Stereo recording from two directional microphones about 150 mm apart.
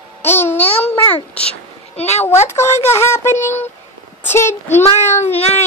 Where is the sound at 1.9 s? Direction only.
45° left (ahead or behind).